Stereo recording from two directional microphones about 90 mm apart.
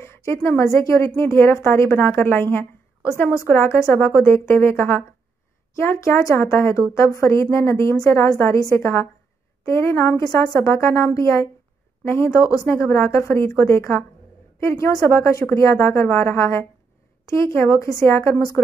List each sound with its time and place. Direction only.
0.0 s a woman's voice: 30° left (ahead or behind)
15.1 s a woman's voice: 35° left (ahead or behind)